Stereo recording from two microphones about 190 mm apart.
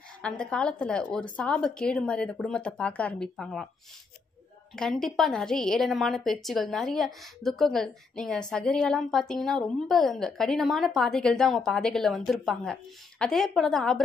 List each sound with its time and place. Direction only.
0.2 s a woman's voice: 5° left (ahead or behind)
4.7 s a woman's voice: 5° left (ahead or behind)